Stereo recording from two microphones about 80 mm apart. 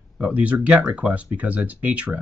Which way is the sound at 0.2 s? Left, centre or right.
Centre.